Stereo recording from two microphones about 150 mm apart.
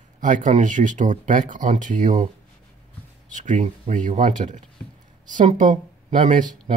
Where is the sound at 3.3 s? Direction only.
55° right (ahead or behind).